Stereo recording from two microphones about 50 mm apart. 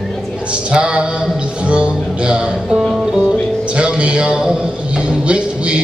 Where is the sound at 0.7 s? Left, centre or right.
Centre.